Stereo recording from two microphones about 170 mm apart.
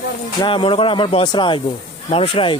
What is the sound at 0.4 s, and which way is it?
Speech, 30° left (ahead or behind).